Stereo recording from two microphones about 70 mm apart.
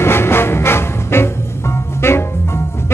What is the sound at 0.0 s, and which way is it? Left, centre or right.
Music, left.